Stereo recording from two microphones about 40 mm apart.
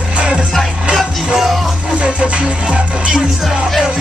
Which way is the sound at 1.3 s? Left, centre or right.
Centre.